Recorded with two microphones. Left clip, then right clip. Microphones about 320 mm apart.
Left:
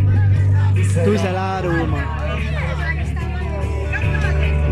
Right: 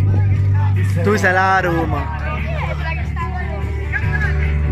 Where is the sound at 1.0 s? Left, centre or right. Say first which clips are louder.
Right 6 dB; right.